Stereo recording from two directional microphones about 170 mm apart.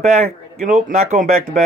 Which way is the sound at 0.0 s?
40° right (ahead or behind).